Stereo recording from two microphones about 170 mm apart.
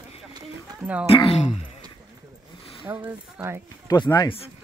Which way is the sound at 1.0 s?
35° left (ahead or behind).